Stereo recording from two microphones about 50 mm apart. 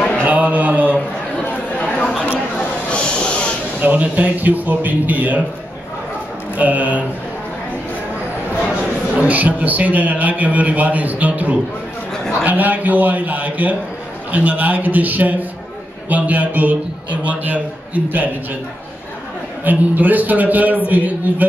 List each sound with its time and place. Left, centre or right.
0.2 s mantra: right
2.9 s a sound: left
3.8 s a man's voice: right
6.5 s a man's voice: right
9.1 s a man's voice: right
19.6 s a man's voice: right